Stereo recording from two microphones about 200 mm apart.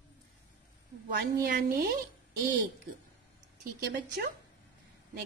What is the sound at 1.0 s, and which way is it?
Speech, 45° right (ahead or behind).